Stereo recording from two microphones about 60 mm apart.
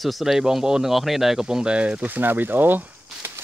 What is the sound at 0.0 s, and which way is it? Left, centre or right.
Speech, centre.